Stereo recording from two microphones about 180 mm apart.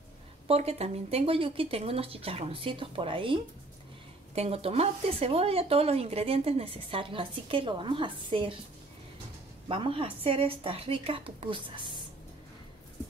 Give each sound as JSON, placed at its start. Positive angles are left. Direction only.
{"t": 0.5, "sound": "speech", "side_deg": -35}
{"t": 4.4, "sound": "speech", "side_deg": -35}
{"t": 9.7, "sound": "speech", "side_deg": -30}